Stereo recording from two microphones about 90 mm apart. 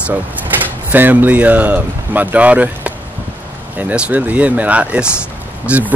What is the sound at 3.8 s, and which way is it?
Speech, 15° right (ahead or behind).